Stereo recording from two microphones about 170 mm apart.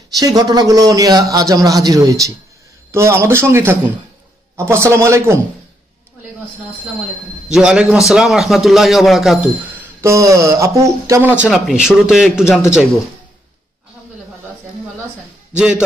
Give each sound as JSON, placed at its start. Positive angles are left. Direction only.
{"t": 0.2, "sound": "a man's voice", "side_deg": -20}
{"t": 7.4, "sound": "speech", "side_deg": -5}
{"t": 15.5, "sound": "speech", "side_deg": -5}